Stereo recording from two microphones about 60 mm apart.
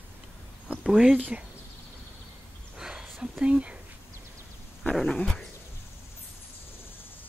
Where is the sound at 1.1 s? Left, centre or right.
Right.